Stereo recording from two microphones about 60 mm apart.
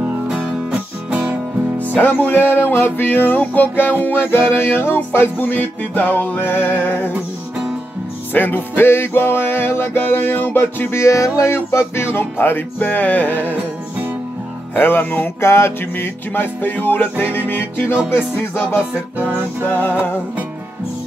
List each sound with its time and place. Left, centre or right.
2.0 s music: left
8.3 s music: left
13.5 s music: right
14.8 s music: left